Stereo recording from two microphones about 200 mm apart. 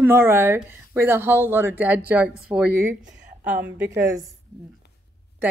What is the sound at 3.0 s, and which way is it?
Speech, 40° right (ahead or behind).